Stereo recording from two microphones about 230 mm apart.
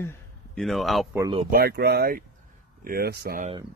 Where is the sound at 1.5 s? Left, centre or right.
Right.